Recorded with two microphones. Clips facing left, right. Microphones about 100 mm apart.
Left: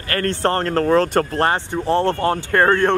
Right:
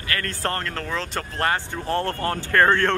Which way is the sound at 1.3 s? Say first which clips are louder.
Left 5 dB; 30° left (ahead or behind).